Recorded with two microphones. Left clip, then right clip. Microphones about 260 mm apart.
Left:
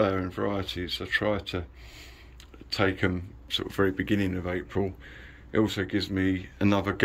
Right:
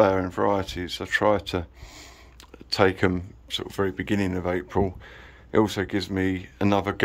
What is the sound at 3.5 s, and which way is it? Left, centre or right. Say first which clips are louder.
Speech: even; centre.